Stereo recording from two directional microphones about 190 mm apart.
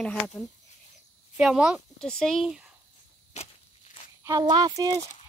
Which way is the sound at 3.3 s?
35° left (ahead or behind).